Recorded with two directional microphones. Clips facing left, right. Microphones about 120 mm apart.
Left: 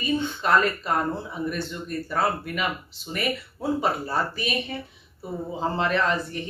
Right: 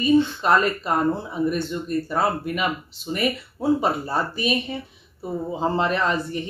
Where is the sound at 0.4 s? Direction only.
20° right (ahead or behind).